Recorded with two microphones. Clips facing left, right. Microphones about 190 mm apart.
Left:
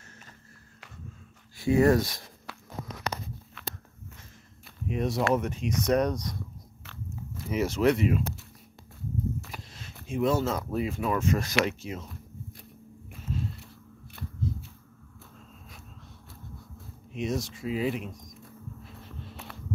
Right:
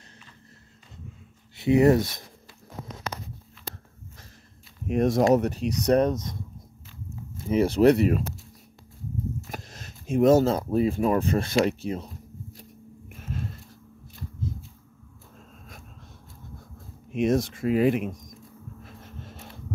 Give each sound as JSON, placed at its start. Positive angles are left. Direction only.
{"t": 1.6, "sound": "speech", "side_deg": -20}
{"t": 2.5, "sound": "a sound", "side_deg": 75}
{"t": 3.6, "sound": "walk", "side_deg": 75}
{"t": 4.8, "sound": "speech", "side_deg": -50}
{"t": 5.3, "sound": "speech", "side_deg": -35}
{"t": 5.9, "sound": "speech", "side_deg": -25}
{"t": 7.4, "sound": "speech", "side_deg": -30}
{"t": 9.5, "sound": "speech", "side_deg": -45}
{"t": 13.3, "sound": "a sound", "side_deg": -55}
{"t": 17.1, "sound": "speech", "side_deg": -55}